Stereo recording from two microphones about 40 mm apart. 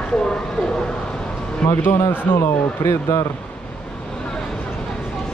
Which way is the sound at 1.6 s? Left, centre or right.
Left.